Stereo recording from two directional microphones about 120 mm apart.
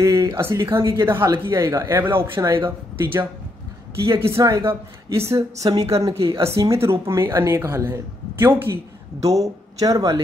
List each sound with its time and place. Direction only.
0.0 s a woman's voice: 25° right (ahead or behind)